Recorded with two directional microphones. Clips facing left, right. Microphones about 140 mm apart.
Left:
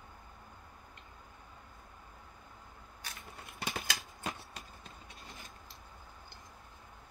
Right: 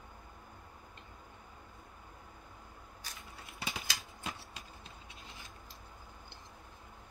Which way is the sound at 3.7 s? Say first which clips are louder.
Left 3 dB; 55° left (ahead or behind).